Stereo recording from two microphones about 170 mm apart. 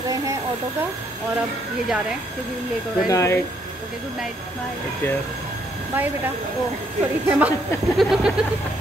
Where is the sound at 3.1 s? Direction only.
20° left (ahead or behind).